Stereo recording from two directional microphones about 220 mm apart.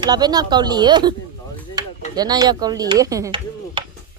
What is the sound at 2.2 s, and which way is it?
Chop, 20° right (ahead or behind).